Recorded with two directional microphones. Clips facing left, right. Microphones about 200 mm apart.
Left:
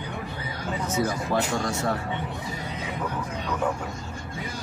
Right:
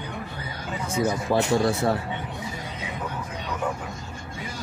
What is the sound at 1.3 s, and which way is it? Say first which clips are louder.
Speech: right 4 dB; 30° right (ahead or behind).